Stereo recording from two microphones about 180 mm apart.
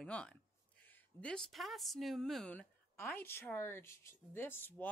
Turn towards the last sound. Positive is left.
turn(degrees=10)  # may be behind; listen again after turning